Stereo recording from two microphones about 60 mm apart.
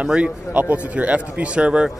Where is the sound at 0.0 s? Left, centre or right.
Centre.